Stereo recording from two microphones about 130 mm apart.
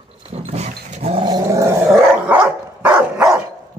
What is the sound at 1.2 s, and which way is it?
Dog, 30° right (ahead or behind).